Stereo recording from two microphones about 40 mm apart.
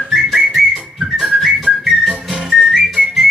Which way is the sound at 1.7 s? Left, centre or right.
Centre.